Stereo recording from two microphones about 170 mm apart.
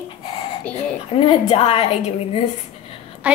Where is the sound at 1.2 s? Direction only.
30° left (ahead or behind).